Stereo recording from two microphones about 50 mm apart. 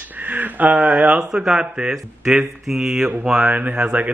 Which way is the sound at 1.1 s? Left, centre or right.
Centre.